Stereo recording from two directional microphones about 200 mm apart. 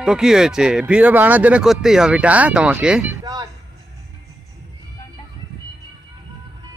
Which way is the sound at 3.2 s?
20° right (ahead or behind).